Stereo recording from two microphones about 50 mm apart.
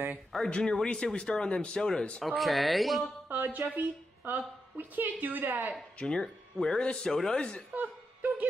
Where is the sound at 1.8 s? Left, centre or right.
Centre.